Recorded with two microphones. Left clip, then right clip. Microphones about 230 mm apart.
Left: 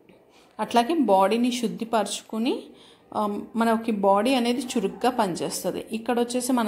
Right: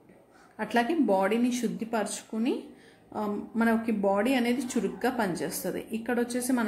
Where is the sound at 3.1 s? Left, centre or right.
Centre.